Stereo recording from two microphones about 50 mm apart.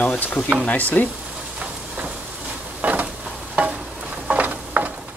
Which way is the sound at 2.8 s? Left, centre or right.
Right.